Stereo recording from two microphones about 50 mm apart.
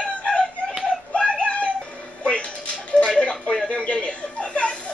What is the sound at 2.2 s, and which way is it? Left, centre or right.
Music, left.